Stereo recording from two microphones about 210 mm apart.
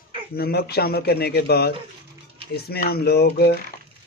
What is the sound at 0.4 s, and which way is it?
Speech, 50° left (ahead or behind).